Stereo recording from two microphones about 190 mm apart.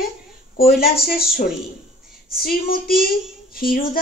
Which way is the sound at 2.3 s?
50° left (ahead or behind).